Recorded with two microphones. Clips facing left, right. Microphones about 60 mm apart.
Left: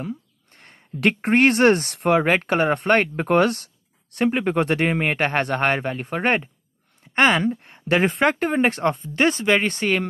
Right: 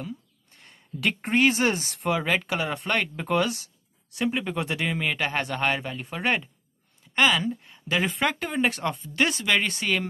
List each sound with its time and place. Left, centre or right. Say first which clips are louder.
0.0 s speech: left 6 dB; left